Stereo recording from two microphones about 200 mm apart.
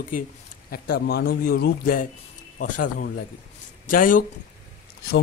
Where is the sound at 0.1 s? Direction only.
45° left (ahead or behind).